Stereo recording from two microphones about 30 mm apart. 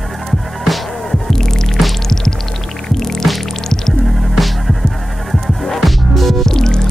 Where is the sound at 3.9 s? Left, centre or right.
Centre.